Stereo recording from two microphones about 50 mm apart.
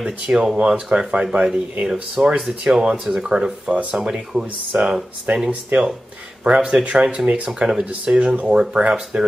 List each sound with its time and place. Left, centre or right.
0.0 s speech: centre
5.3 s speech: right
6.6 s speech: centre
7.4 s speech: centre